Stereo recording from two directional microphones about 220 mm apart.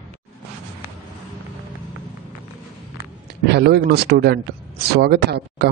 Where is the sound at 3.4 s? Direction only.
50° right (ahead or behind).